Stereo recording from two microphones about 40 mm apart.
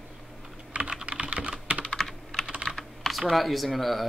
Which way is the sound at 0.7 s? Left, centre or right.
Right.